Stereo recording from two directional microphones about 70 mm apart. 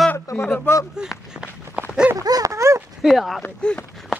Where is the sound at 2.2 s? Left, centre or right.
Right.